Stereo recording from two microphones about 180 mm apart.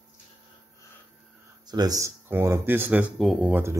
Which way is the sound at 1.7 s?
20° right (ahead or behind).